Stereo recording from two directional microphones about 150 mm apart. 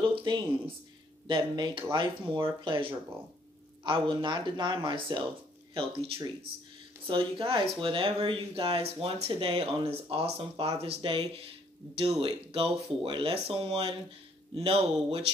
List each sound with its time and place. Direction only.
0.0 s a sound: 30° right (ahead or behind)
1.2 s speech: 30° right (ahead or behind)
3.8 s speech: 35° right (ahead or behind)